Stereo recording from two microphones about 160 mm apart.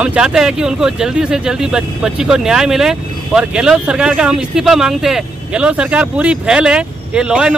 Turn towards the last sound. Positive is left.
turn(degrees=-5)  # may be behind; listen again after turning